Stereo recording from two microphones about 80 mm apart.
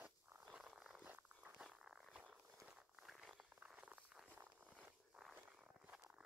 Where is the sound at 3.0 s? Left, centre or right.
Centre.